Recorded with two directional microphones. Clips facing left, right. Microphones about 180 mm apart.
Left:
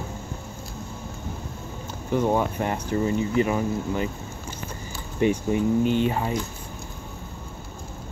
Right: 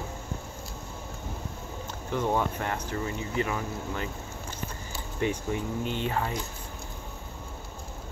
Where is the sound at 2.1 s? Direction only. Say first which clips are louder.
Left 5 dB; 10° left (ahead or behind).